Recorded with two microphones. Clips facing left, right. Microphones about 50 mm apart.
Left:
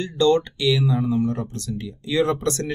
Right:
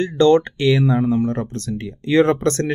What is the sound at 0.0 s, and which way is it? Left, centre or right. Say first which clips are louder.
Speech: right 5 dB; right.